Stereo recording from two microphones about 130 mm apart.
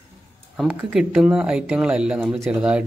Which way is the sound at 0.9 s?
5° right (ahead or behind).